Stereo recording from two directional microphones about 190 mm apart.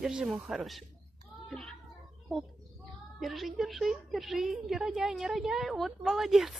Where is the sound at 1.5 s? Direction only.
5° left (ahead or behind).